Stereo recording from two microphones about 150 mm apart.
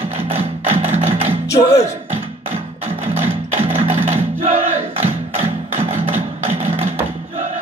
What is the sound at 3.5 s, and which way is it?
Music, 50° right (ahead or behind).